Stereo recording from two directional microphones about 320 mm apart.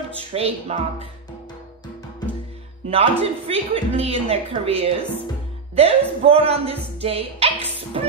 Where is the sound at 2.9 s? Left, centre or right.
Centre.